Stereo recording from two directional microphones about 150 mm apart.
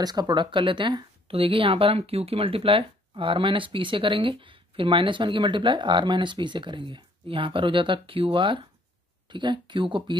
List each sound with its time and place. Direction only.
0.0 s speech: 25° right (ahead or behind)